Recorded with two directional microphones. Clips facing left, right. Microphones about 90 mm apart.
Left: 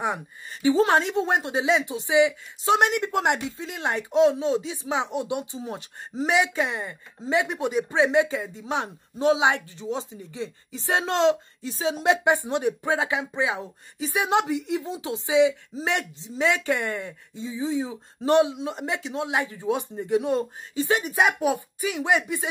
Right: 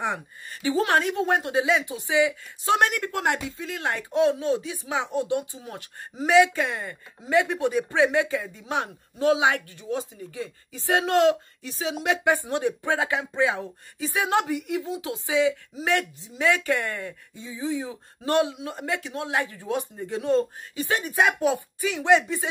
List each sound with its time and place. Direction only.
0.0 s speech: 20° left (ahead or behind)